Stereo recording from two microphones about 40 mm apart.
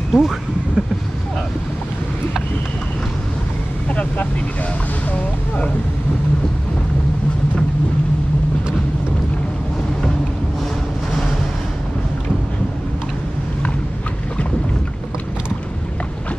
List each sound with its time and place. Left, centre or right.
0.1 s speech: centre
3.9 s speech: left